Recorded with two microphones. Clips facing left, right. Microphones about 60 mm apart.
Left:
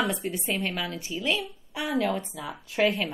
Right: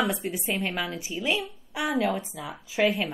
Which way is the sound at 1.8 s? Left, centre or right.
Right.